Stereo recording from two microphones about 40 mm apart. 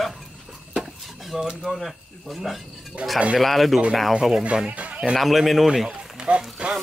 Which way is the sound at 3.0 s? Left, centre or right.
Right.